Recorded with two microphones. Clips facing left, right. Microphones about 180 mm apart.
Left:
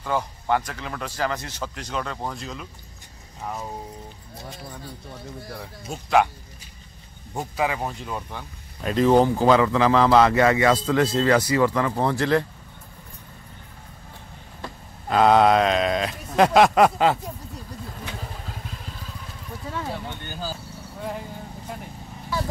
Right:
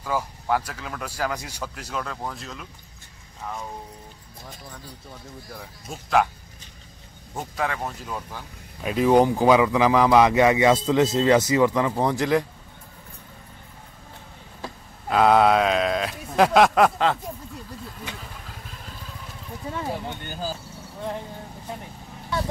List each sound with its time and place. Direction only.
0.0 s speech: 5° right (ahead or behind)
5.6 s speech: centre (ahead or behind)
7.3 s speech: 5° left (ahead or behind); by 12.4 s 15° right (ahead or behind)
14.6 s speech: 5° right (ahead or behind)
19.7 s a sound: 15° right (ahead or behind)